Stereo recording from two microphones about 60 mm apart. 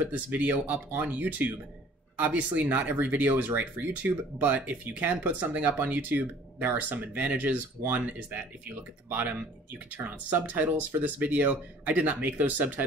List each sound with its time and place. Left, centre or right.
0.0 s speech: right